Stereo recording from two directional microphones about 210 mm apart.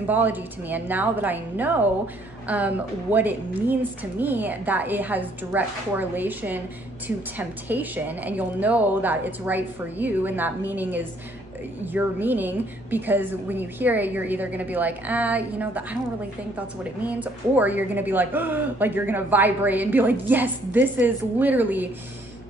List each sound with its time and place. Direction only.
0.0 s a woman's voice: 10° right (ahead or behind)